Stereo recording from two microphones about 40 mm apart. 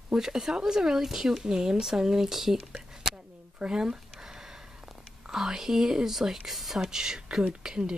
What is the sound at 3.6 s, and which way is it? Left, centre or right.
Speech, centre.